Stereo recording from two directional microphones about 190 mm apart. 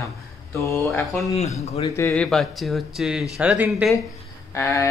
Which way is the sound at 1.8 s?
15° left (ahead or behind).